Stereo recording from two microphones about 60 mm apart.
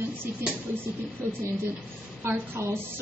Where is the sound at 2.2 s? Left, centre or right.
Right.